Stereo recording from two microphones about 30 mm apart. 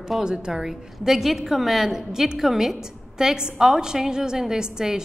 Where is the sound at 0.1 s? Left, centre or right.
Centre.